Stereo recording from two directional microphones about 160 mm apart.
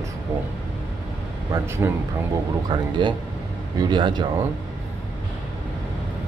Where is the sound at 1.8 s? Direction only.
15° right (ahead or behind).